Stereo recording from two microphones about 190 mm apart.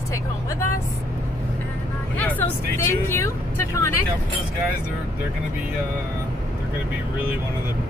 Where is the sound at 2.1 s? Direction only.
10° left (ahead or behind).